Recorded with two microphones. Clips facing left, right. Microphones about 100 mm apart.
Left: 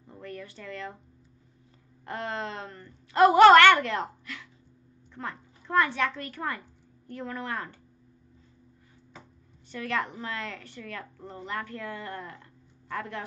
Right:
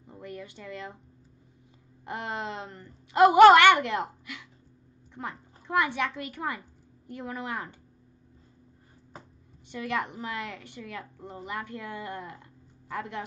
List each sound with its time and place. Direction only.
0.0 s a sound: 15° right (ahead or behind)
2.0 s a woman's voice: 15° right (ahead or behind)
9.7 s a woman's voice: 15° right (ahead or behind)